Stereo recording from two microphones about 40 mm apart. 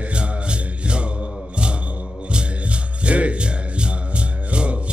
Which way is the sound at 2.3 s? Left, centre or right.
Right.